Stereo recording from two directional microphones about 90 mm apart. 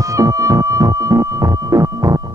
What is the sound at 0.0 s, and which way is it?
Music, 35° right (ahead or behind).